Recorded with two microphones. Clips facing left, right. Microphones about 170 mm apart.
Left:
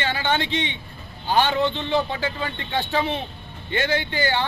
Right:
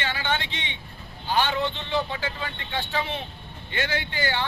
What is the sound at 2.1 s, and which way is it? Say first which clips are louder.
A man's voice: left 4 dB; 35° left (ahead or behind).